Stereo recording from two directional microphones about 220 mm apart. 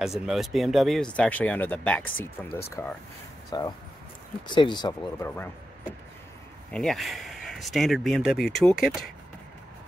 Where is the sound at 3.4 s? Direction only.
20° left (ahead or behind).